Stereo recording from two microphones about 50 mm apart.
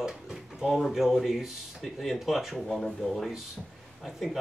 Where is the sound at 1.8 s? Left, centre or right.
Centre.